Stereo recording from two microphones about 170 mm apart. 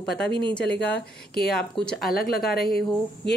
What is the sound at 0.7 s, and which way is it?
Speech, 80° left.